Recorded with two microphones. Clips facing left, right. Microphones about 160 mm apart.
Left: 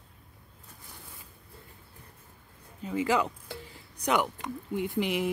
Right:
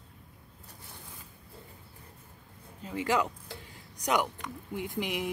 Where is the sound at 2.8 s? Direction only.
5° left (ahead or behind).